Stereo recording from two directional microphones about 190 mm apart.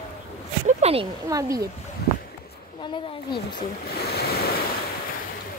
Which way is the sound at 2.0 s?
60° left (ahead or behind).